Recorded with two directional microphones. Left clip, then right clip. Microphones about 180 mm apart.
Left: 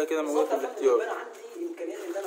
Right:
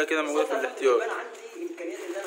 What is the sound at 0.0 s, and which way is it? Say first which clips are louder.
Speech: right 1 dB; 10° left (ahead or behind).